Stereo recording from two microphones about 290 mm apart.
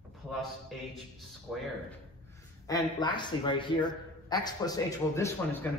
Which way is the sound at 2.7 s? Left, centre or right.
Centre.